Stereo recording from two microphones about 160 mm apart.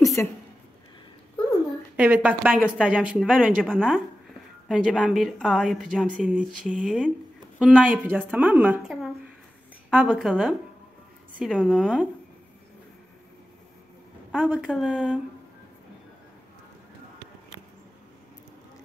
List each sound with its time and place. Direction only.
0.0 s a sound: 20° left (ahead or behind)
2.0 s a woman's voice: 10° right (ahead or behind)
3.6 s a woman's voice: 5° left (ahead or behind)
7.8 s a woman's voice: 10° right (ahead or behind)
14.4 s a woman's voice: 10° right (ahead or behind)